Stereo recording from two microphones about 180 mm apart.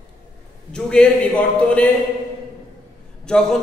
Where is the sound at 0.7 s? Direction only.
5° left (ahead or behind).